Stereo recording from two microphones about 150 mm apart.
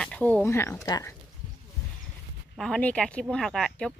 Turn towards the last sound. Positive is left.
turn(degrees=5)  # may be behind; listen again after turning